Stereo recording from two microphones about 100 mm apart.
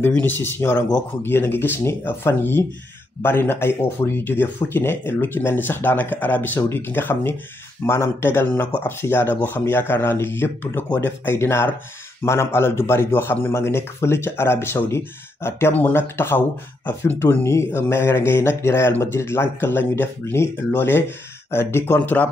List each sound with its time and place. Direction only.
0.0 s a man's voice: 20° left (ahead or behind)